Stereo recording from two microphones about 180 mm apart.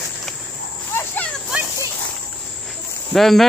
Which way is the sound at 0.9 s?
10° left (ahead or behind).